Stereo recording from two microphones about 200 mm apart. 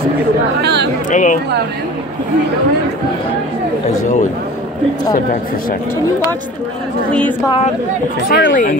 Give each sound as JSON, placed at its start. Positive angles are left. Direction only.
{"t": 0.6, "sound": "speech", "side_deg": -55}
{"t": 1.1, "sound": "speech", "side_deg": 40}
{"t": 5.1, "sound": "speech", "side_deg": 45}
{"t": 8.3, "sound": "speech", "side_deg": 65}